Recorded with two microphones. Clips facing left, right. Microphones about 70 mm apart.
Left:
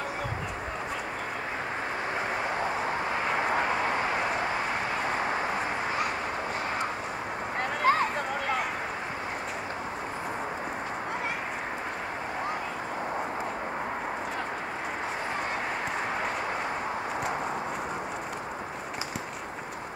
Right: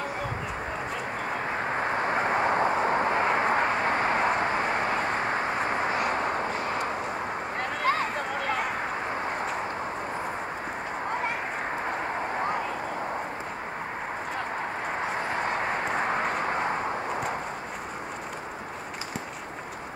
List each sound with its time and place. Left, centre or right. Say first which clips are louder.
2.0 s vehicle: right 6 dB; right
3.2 s vehicle: right 3 dB; right
7.8 s a sound: left 2 dB; centre